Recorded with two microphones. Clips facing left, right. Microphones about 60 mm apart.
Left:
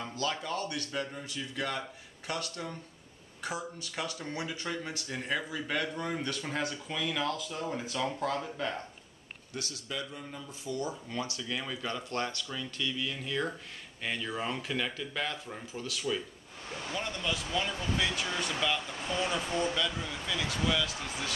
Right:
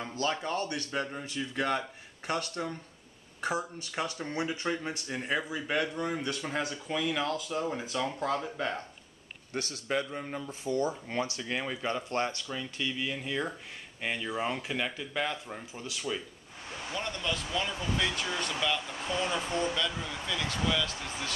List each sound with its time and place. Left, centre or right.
0.0 s speech: right; by 8.7 s centre
9.5 s speech: right; by 16.2 s centre
16.9 s speech: centre